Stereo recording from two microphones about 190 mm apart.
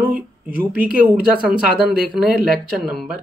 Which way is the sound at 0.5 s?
10° right (ahead or behind).